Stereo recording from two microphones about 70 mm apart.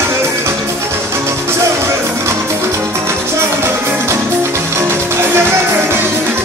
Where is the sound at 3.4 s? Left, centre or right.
Right.